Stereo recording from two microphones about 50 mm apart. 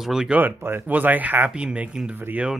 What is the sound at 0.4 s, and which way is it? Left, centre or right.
A man's voice, right.